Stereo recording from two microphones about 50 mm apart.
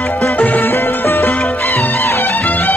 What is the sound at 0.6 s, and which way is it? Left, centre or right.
Music, left.